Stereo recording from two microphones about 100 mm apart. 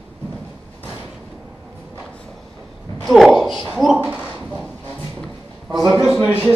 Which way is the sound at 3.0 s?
Centre (ahead or behind).